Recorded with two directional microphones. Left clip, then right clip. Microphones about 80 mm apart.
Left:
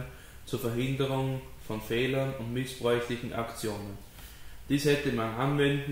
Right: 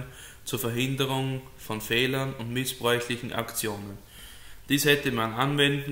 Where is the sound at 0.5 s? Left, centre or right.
Right.